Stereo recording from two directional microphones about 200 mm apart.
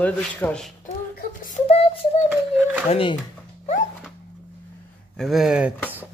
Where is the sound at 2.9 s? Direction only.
25° left (ahead or behind).